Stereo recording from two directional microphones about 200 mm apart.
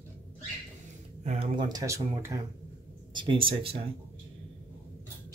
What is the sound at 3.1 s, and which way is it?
Speech, 25° right (ahead or behind).